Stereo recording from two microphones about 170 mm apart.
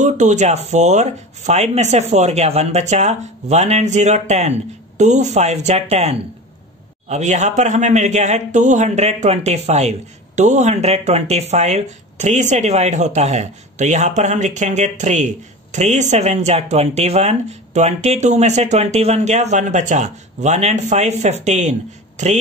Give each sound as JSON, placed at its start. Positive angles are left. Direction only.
{"t": 0.0, "sound": "speech", "side_deg": -45}